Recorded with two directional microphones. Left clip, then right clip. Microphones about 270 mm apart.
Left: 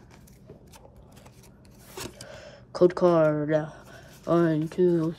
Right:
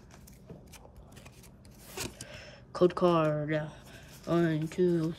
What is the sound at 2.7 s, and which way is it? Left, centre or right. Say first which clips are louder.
Speech: left 6 dB; centre.